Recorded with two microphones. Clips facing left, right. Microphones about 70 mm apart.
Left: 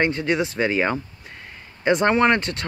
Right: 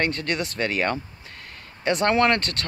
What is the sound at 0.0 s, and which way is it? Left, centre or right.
Speech, centre.